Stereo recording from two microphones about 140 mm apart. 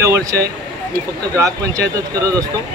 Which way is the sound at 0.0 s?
20° right (ahead or behind).